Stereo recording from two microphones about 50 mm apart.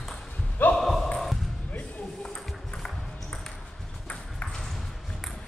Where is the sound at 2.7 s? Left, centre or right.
Centre.